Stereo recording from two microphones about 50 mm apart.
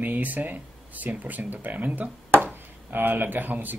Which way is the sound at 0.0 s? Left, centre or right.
Right.